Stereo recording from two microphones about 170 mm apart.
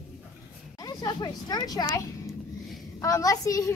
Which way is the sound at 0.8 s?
20° left (ahead or behind).